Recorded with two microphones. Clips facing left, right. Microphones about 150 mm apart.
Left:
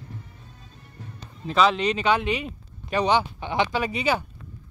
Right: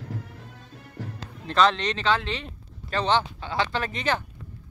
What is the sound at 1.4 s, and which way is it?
Speech, 5° left (ahead or behind).